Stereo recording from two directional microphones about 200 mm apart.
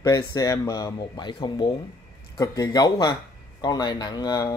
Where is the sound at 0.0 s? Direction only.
15° left (ahead or behind).